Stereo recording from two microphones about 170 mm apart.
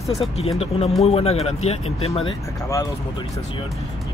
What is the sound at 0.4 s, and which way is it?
Speech, 35° left (ahead or behind).